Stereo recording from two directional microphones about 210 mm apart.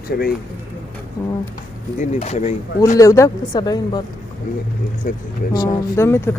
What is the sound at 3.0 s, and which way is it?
Speech, 15° left (ahead or behind).